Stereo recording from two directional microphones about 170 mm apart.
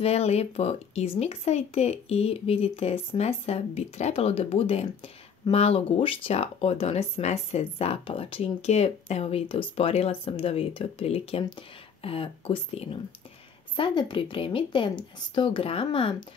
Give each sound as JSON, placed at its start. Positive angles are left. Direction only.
{"t": 0.0, "sound": "speech", "side_deg": 40}